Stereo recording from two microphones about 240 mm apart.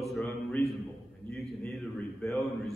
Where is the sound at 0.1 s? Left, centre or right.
Centre.